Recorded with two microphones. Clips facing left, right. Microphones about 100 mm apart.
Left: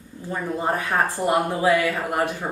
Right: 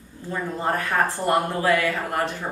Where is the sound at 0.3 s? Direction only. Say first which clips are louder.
Left 1 dB; 15° left (ahead or behind).